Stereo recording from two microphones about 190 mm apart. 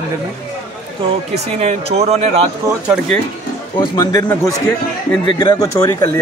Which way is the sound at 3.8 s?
20° left (ahead or behind).